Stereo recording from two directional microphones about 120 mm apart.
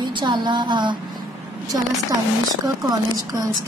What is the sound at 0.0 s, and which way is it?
Speech, 40° right (ahead or behind).